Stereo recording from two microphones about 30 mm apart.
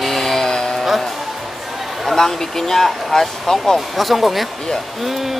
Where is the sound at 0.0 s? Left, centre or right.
Centre.